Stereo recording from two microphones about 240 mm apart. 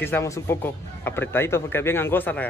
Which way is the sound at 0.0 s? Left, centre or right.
Centre.